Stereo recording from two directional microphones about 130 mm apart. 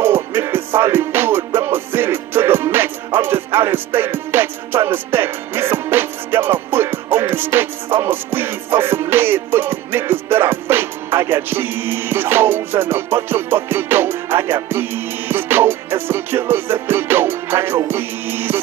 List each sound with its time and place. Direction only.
0.0 s music: 15° right (ahead or behind)